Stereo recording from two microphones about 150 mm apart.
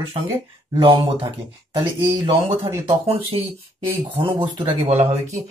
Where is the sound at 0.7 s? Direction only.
30° right (ahead or behind).